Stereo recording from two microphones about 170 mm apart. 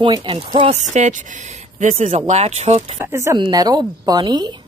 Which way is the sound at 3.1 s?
15° right (ahead or behind).